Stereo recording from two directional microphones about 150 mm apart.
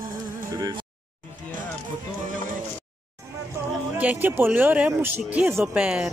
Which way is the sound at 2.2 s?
60° right (ahead or behind).